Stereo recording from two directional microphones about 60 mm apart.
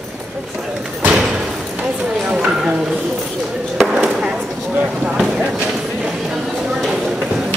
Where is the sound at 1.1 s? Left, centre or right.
Centre.